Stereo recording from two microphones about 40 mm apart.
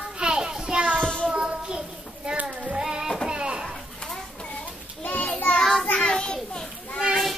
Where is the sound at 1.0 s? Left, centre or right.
Left.